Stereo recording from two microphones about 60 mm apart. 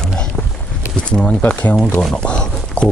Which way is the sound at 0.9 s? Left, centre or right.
Centre.